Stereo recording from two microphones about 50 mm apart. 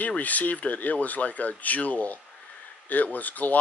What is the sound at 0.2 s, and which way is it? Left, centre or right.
Speech, left.